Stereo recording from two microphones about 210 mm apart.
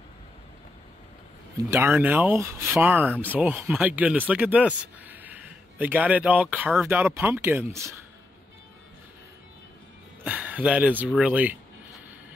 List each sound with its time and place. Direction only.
1.7 s speech: 10° right (ahead or behind)
10.2 s speech: 10° right (ahead or behind)